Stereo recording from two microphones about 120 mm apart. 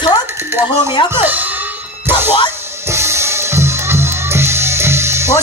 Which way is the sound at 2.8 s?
20° right (ahead or behind).